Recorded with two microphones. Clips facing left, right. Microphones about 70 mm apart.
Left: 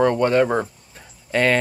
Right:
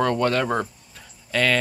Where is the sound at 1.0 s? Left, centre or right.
Left.